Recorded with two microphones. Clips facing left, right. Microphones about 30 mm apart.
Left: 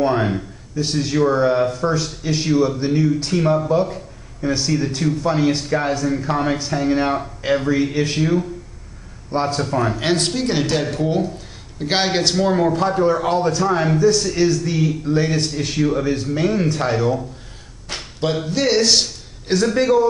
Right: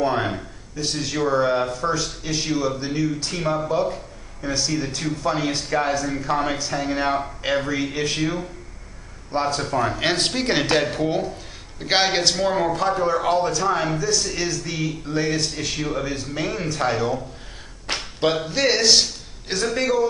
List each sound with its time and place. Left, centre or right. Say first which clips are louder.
0.0 s a man's voice: left 4 dB; centre
3.3 s speech: left 5 dB; centre
8.2 s speech: left 6 dB; centre; by 10.9 s right
10.9 s speech: left 3 dB; centre
13.9 s a man's voice: left 7 dB; centre
15.6 s speech: left 3 dB; centre
16.0 s a man's voice: left 6 dB; centre
17.9 s a sound: right 3 dB; right
18.2 s a man's voice: left 1 dB; centre